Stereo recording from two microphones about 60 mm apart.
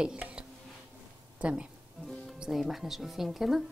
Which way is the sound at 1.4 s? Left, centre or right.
Centre.